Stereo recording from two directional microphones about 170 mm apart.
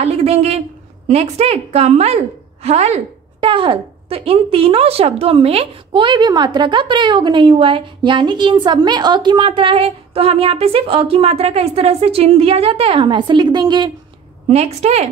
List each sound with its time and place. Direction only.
0.0 s a woman's voice: 35° right (ahead or behind)
14.5 s a woman's voice: 40° right (ahead or behind)